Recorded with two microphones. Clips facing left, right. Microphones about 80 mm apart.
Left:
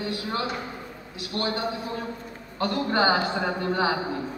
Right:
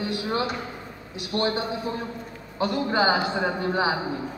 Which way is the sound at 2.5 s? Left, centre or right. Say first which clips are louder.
Right 1 dB; centre.